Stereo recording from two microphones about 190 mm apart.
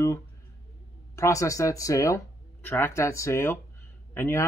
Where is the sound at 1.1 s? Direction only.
15° left (ahead or behind).